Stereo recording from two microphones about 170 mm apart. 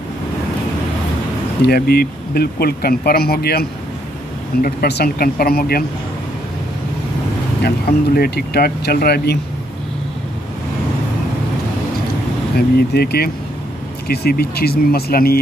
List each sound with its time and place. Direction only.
1.6 s speech: 65° left (ahead or behind)
7.6 s speech: 65° left (ahead or behind)
12.5 s speech: 65° left (ahead or behind)